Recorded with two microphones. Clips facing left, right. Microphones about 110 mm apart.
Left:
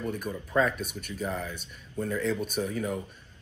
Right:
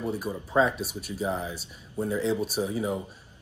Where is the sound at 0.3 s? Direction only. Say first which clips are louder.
Right 2 dB; 20° right (ahead or behind).